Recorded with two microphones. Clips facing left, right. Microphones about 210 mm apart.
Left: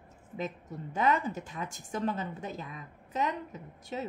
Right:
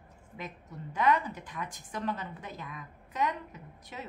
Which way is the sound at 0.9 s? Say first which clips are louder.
Even; 25° left (ahead or behind).